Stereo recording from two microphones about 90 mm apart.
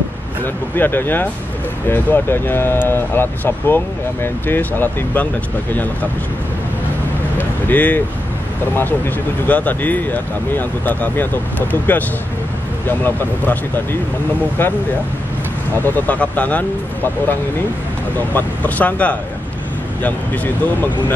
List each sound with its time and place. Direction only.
0.4 s speech: 25° left (ahead or behind)
7.3 s vehicle: 20° left (ahead or behind)
8.7 s speech: 25° left (ahead or behind)
14.6 s speech: 20° left (ahead or behind)